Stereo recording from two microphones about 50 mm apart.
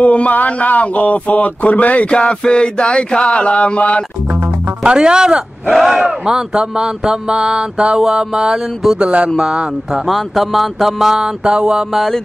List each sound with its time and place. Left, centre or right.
0.0 s speech: left
4.8 s speech: centre
5.7 s speech: centre
10.0 s mantra: centre